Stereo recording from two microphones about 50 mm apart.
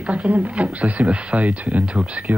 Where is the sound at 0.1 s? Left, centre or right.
Right.